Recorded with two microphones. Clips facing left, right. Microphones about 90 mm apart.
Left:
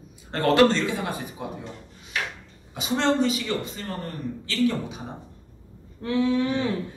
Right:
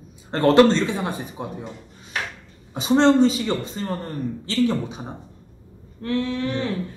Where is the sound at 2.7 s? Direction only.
30° right (ahead or behind).